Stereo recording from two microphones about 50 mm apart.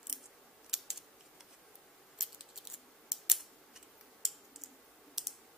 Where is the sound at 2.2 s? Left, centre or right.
Centre.